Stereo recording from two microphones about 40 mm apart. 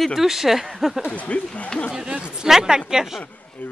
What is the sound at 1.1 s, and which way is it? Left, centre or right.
Speech, left.